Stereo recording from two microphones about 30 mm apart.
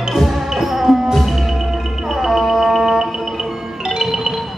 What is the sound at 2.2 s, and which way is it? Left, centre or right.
Music, centre.